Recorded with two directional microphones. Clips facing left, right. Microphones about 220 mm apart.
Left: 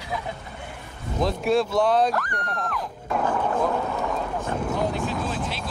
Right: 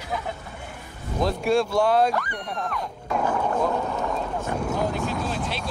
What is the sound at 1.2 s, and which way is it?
Speech, centre (ahead or behind).